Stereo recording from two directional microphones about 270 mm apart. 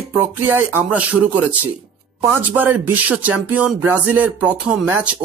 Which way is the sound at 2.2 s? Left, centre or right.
Centre.